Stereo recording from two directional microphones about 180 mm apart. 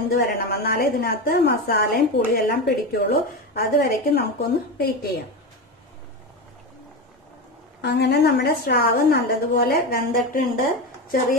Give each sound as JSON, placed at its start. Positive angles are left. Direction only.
{"t": 0.1, "sound": "a woman's voice", "side_deg": 60}
{"t": 7.8, "sound": "a woman's voice", "side_deg": 65}